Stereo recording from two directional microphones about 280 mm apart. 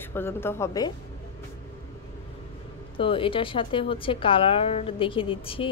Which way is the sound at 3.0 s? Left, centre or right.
Centre.